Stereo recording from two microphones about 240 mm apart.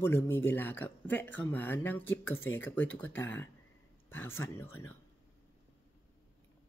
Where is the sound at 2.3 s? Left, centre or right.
Left.